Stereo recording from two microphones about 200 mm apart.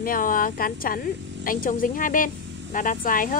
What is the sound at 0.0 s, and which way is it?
A woman's voice, 45° left (ahead or behind).